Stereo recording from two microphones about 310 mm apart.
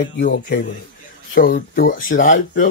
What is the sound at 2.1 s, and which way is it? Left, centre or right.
Speech, left.